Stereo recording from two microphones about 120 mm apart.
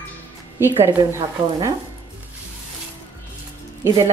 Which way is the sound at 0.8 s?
20° right (ahead or behind).